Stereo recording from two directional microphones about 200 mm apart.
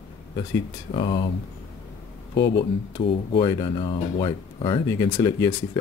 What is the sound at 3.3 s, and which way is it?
Speech, 20° left (ahead or behind).